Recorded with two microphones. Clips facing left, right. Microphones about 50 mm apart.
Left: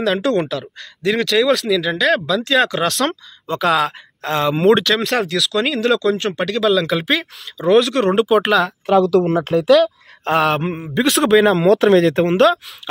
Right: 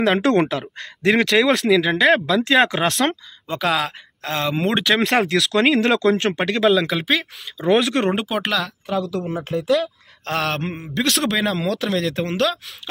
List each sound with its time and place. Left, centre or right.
0.0 s speech: right
1.2 s speech: centre
2.9 s speech: centre
4.8 s speech: centre
5.3 s speech: right
6.7 s speech: centre
7.7 s speech: centre
8.1 s speech: centre
8.4 s a man's voice: centre
8.8 s speech: left
10.2 s a man's voice: centre
11.6 s speech: left